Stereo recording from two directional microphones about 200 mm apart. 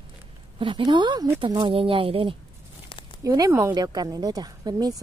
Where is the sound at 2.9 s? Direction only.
25° left (ahead or behind).